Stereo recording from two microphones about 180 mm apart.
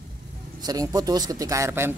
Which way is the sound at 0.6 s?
20° right (ahead or behind).